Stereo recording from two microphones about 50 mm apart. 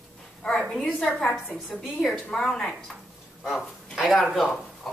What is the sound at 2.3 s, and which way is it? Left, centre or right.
Speech, centre.